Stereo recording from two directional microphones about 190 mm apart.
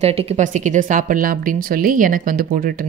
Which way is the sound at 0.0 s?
35° right (ahead or behind).